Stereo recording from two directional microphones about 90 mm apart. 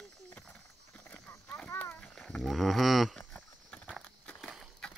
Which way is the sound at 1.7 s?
20° left (ahead or behind).